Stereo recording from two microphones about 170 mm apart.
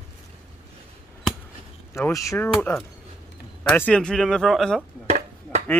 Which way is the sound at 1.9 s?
15° left (ahead or behind).